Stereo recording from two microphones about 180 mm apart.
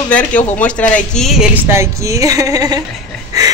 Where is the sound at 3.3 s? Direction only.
20° right (ahead or behind).